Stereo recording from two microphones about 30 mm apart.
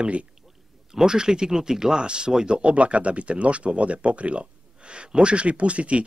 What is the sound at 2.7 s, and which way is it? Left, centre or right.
Speech, right.